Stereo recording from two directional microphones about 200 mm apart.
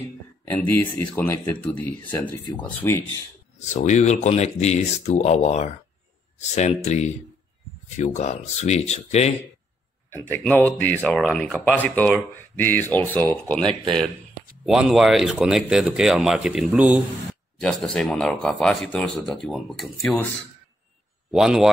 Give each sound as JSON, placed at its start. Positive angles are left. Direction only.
{"t": 0.5, "sound": "speech", "side_deg": 10}
{"t": 3.5, "sound": "speech", "side_deg": 35}
{"t": 10.3, "sound": "speech", "side_deg": 10}
{"t": 13.6, "sound": "speech", "side_deg": -25}
{"t": 14.7, "sound": "speech", "side_deg": 0}
{"t": 17.6, "sound": "speech", "side_deg": 5}
{"t": 21.3, "sound": "speech", "side_deg": 0}